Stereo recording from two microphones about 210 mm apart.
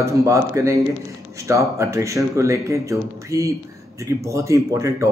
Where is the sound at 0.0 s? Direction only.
15° right (ahead or behind).